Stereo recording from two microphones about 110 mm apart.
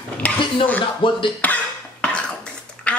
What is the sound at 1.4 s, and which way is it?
Cough, 10° left (ahead or behind).